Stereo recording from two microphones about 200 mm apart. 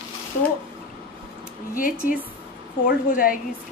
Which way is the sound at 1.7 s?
45° left (ahead or behind).